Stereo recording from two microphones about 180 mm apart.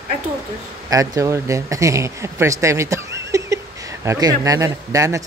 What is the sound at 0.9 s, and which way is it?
Speech, 15° right (ahead or behind).